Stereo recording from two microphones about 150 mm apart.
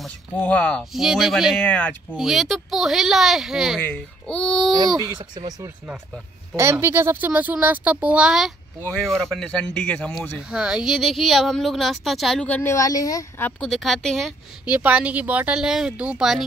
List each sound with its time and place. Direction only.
0.4 s a woman's voice: 10° left (ahead or behind)
4.7 s speech: 25° right (ahead or behind)
6.5 s speech: 15° right (ahead or behind); by 10.4 s 10° left (ahead or behind)
10.5 s a woman's voice: 5° right (ahead or behind)
12.7 s speech: 20° left (ahead or behind)
13.6 s a woman's voice: centre (ahead or behind)
14.7 s speech: 10° right (ahead or behind)